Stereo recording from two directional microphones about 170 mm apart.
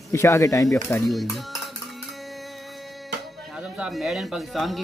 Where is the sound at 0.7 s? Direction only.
5° left (ahead or behind).